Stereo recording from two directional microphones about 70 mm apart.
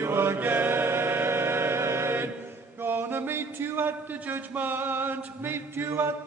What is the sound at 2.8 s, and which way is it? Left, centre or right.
Music, right.